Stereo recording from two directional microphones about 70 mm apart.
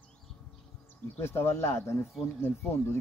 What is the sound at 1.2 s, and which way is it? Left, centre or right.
Speech, left.